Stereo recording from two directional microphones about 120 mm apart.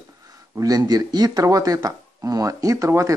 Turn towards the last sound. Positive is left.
turn(degrees=-25)  # may be behind; listen again after turning